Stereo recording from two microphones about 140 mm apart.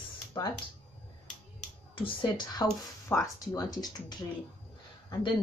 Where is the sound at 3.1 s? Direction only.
15° left (ahead or behind).